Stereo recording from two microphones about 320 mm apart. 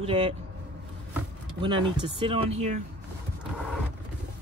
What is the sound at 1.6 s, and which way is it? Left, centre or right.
Speech, centre.